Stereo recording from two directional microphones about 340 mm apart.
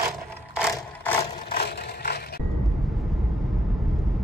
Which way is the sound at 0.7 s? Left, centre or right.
Centre.